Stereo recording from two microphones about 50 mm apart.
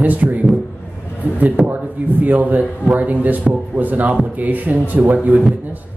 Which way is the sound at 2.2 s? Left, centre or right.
Right.